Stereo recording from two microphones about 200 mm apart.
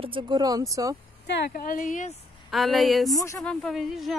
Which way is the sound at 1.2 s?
55° left (ahead or behind).